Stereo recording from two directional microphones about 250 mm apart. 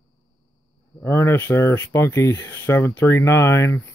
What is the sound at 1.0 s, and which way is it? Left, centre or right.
Speech, centre.